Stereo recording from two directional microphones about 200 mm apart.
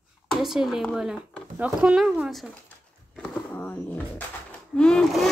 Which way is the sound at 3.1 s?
5° left (ahead or behind).